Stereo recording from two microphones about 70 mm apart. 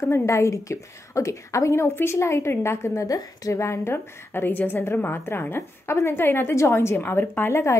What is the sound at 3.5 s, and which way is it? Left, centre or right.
A woman's voice, left.